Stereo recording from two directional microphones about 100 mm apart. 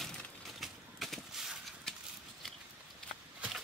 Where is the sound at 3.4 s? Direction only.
10° right (ahead or behind).